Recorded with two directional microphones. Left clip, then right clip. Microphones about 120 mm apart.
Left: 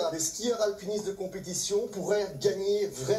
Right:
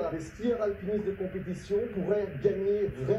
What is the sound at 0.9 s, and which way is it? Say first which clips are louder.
Speech: right 1 dB; 30° left (ahead or behind).